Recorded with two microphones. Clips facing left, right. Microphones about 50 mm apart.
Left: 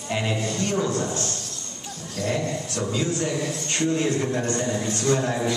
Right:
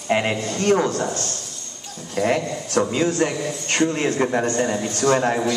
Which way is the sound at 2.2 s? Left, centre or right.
Right.